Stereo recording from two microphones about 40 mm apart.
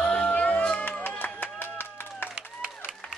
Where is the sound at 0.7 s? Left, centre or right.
Left.